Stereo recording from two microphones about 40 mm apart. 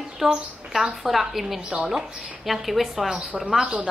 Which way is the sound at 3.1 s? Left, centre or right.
Right.